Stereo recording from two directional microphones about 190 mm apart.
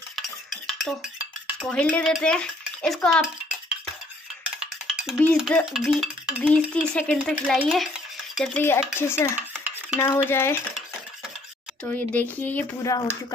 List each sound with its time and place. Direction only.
0.1 s stir: centre (ahead or behind)
1.7 s speech: 10° left (ahead or behind)
4.6 s music: centre (ahead or behind)
5.7 s dishes: centre (ahead or behind)
8.6 s speech: 15° left (ahead or behind)
11.8 s speech: 10° left (ahead or behind)